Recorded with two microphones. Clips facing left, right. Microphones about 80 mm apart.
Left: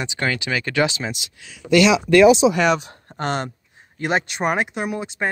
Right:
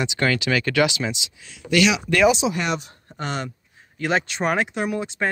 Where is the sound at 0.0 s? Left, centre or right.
Left.